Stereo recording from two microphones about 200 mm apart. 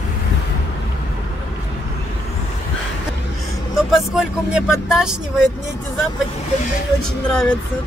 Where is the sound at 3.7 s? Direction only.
Centre (ahead or behind).